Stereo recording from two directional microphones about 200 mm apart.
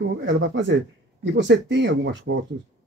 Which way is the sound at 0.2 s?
65° right (ahead or behind).